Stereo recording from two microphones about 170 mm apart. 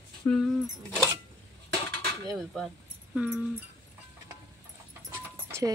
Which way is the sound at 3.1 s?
5° right (ahead or behind).